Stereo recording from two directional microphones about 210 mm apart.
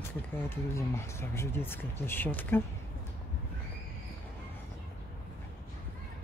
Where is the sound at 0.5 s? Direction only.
10° left (ahead or behind).